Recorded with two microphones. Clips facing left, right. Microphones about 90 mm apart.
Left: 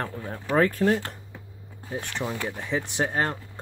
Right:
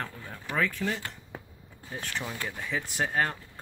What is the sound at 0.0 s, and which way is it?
Speech, 35° left (ahead or behind).